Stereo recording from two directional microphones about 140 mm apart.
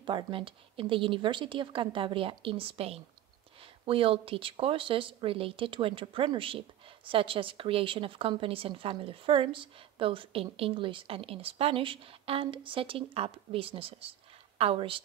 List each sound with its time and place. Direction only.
0.0 s a woman's voice: 40° right (ahead or behind)